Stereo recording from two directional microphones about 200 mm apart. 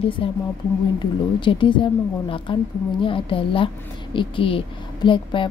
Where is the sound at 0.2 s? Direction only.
25° left (ahead or behind).